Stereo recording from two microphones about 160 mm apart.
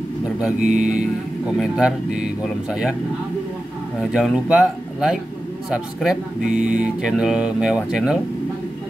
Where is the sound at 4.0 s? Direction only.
5° right (ahead or behind).